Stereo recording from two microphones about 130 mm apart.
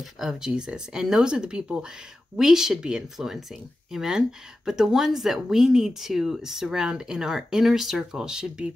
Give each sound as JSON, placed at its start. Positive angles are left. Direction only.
{"t": 0.0, "sound": "speech", "side_deg": -5}